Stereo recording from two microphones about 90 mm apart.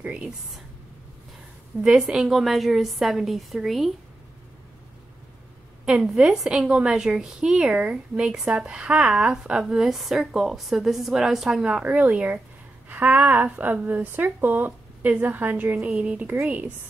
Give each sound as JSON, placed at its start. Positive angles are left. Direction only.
{"t": 0.0, "sound": "a woman's voice", "side_deg": -10}
{"t": 1.8, "sound": "a woman's voice", "side_deg": -5}
{"t": 5.9, "sound": "a woman's voice", "side_deg": -10}